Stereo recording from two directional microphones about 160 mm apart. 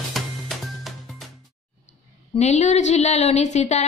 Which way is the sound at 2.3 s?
45° left (ahead or behind).